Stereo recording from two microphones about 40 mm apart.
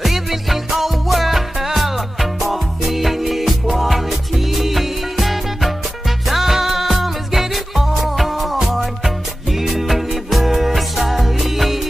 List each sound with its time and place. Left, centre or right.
0.0 s music: centre